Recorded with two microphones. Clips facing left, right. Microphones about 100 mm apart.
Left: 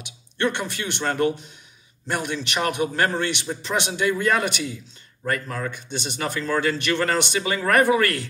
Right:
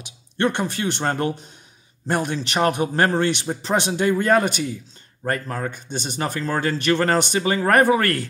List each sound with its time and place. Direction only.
0.4 s a man's voice: 40° right (ahead or behind)